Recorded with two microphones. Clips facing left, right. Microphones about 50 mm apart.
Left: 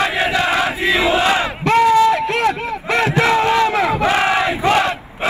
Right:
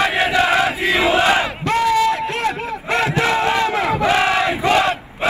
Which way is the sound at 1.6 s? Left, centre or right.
Left.